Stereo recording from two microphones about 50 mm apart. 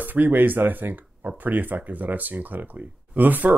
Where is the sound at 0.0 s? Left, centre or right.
Right.